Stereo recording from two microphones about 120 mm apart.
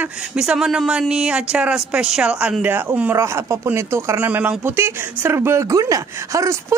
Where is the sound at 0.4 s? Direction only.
5° right (ahead or behind).